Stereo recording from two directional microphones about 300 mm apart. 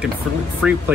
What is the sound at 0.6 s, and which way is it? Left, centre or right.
Speech, centre.